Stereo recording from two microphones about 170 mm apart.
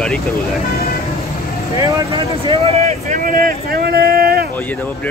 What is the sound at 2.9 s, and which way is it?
Speech, 50° right (ahead or behind).